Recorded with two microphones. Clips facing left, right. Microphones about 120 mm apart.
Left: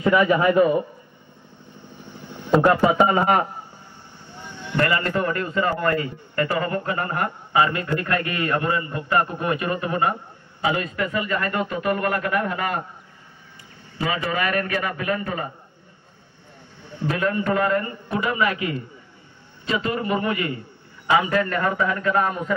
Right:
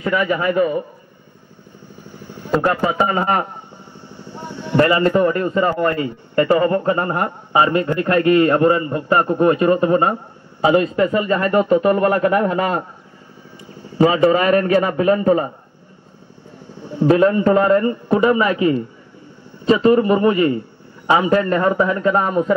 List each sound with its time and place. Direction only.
0.0 s a man's voice: 20° left (ahead or behind)
2.6 s a man's voice: 15° left (ahead or behind)
4.3 s vehicle: 50° right (ahead or behind)
4.7 s a man's voice: 25° right (ahead or behind)
13.8 s a man's voice: 30° right (ahead or behind)
17.0 s a man's voice: 30° right (ahead or behind)